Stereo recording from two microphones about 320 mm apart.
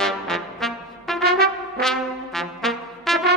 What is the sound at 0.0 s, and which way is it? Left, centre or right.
Brass instrument, centre.